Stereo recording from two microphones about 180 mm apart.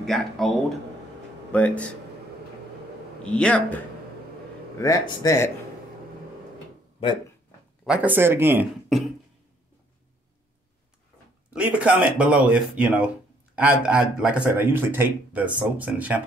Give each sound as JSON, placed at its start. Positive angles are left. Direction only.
{"t": 0.0, "sound": "speech", "side_deg": 0}
{"t": 3.2, "sound": "speech", "side_deg": 5}
{"t": 4.7, "sound": "speech", "side_deg": 20}
{"t": 7.8, "sound": "speech", "side_deg": -5}
{"t": 8.8, "sound": "beatboxing", "side_deg": 0}
{"t": 11.5, "sound": "speech", "side_deg": -5}